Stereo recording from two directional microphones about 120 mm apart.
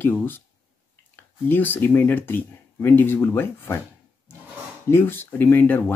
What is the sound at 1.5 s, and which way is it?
Speech, 15° left (ahead or behind).